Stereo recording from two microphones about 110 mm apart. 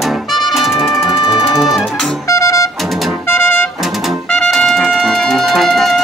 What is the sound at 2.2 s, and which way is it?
Music, 25° left (ahead or behind).